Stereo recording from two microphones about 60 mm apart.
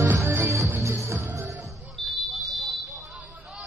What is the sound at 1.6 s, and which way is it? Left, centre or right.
Music, centre.